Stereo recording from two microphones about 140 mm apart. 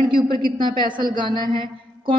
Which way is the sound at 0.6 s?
35° right (ahead or behind).